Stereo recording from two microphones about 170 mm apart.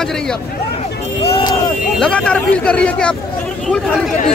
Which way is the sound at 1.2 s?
35° left (ahead or behind).